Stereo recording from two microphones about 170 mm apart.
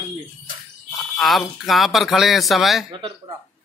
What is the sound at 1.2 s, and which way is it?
Speech, centre (ahead or behind).